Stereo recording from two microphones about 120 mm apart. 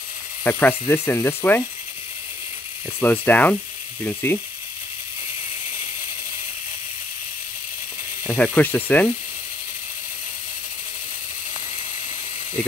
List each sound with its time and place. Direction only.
0.4 s ratchet: 15° left (ahead or behind)
3.0 s speech: 15° left (ahead or behind)
8.3 s speech: 15° left (ahead or behind)